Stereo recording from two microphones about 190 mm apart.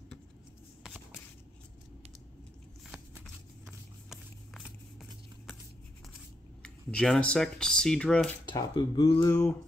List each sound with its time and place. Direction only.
4.1 s vehicle: centre (ahead or behind)
6.6 s speech: 5° left (ahead or behind)
8.5 s speech: 25° left (ahead or behind)
9.2 s a sound: 15° left (ahead or behind)